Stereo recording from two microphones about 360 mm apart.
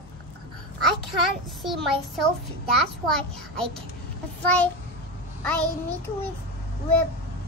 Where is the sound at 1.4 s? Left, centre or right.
Centre.